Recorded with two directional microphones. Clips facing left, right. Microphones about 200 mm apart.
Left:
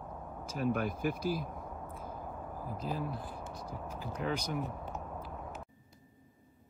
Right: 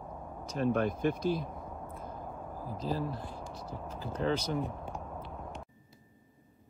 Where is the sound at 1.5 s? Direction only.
Centre (ahead or behind).